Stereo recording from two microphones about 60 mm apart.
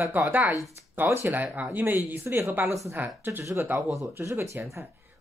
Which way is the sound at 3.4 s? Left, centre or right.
Right.